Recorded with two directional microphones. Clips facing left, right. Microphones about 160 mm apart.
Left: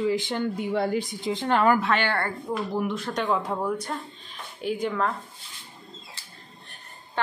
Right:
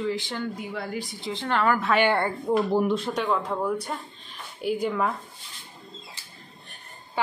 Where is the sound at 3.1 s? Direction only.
Centre (ahead or behind).